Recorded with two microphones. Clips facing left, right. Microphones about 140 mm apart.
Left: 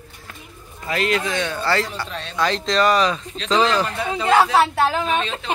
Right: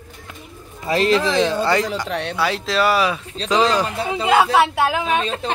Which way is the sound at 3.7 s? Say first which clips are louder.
Right 1 dB; 10° right (ahead or behind).